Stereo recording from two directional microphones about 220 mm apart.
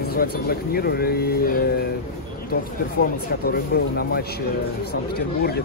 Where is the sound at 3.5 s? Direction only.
45° left (ahead or behind).